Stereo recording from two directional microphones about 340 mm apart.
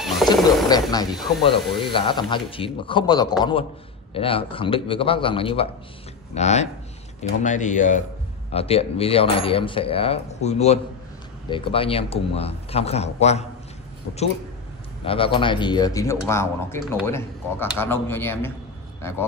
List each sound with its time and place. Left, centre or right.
0.2 s wild animals: centre
0.7 s speech: centre
1.1 s speech: centre
1.4 s speech: centre
15.0 s speech: centre